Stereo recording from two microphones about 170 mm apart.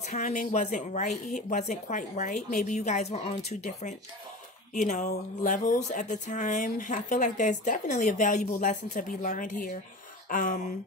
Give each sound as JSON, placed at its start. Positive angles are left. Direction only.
{"t": 0.2, "sound": "speech", "side_deg": 45}